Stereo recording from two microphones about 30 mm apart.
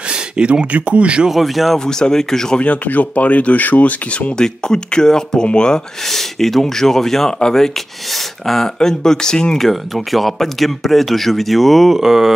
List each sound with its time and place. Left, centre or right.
0.7 s speech: right
1.3 s speech: centre
1.9 s speech: left
2.6 s speech: left
4.4 s speech: left
6.0 s speech: centre
8.1 s a sound: centre
8.7 s speech: centre
9.6 s speech: centre
11.9 s a sound: centre